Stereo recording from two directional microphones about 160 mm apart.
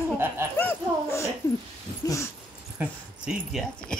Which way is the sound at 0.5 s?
10° left (ahead or behind).